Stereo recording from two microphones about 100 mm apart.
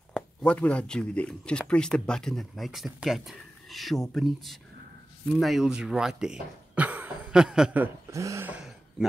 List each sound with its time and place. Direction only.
0.4 s speech: 10° left (ahead or behind); by 7.7 s 5° right (ahead or behind)
8.1 s speech: 30° right (ahead or behind)
8.5 s a sound: 5° right (ahead or behind)